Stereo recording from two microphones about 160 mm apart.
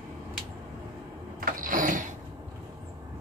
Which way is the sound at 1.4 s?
55° right (ahead or behind).